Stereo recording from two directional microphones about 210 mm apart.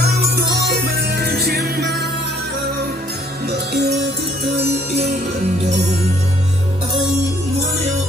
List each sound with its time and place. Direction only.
0.0 s music: 50° right (ahead or behind)
3.4 s music: 50° right (ahead or behind)